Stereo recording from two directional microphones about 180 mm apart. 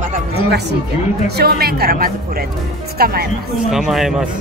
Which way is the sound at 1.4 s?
60° right (ahead or behind).